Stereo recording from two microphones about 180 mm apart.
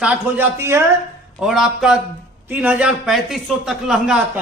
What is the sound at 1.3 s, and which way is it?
A man's voice, centre (ahead or behind).